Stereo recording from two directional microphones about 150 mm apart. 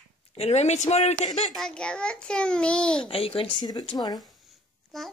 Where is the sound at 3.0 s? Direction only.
40° left (ahead or behind).